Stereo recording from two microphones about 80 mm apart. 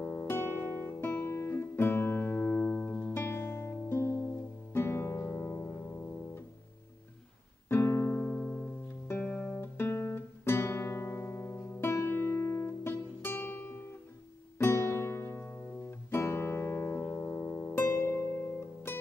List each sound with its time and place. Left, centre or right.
0.0 s guitar: left
4.7 s music: left
7.7 s music: left
9.6 s guitar: left
14.6 s music: left